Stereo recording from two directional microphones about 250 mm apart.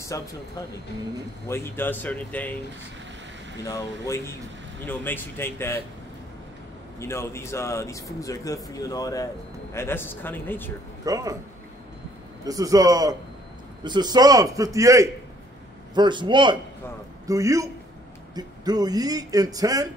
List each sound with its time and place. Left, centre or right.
0.1 s speech: centre
1.5 s speech: centre
3.6 s speech: centre
7.0 s speech: centre
11.1 s speech: centre
12.4 s a man's voice: centre